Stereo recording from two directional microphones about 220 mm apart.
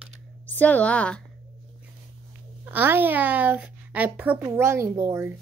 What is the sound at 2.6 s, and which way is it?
A woman's voice, 10° right (ahead or behind).